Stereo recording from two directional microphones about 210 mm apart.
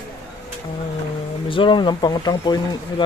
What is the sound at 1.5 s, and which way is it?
Speech, 25° left (ahead or behind).